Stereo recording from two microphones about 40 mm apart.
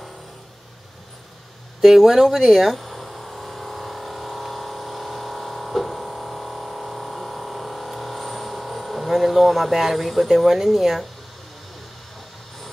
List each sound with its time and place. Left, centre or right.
1.8 s speech: centre
2.8 s vehicle: centre